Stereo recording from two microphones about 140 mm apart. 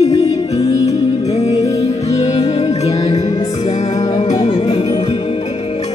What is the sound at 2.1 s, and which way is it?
Music, 45° left (ahead or behind).